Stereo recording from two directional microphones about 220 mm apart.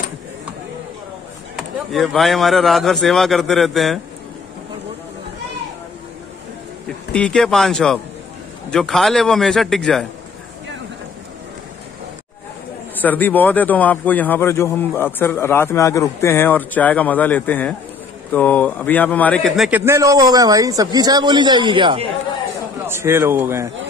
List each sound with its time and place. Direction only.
1.6 s a man's voice: centre (ahead or behind)
7.1 s a man's voice: 5° left (ahead or behind)
13.0 s a man's voice: 10° left (ahead or behind)
19.8 s a man's voice: 15° right (ahead or behind)
22.8 s a man's voice: 10° right (ahead or behind)